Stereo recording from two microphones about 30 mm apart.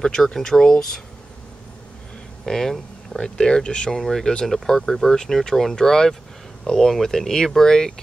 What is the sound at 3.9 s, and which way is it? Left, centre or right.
Speech, centre.